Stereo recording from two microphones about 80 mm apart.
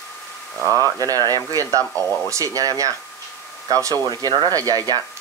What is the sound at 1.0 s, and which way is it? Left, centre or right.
Speech, right.